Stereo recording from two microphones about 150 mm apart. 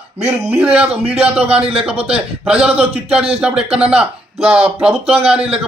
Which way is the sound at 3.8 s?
5° right (ahead or behind).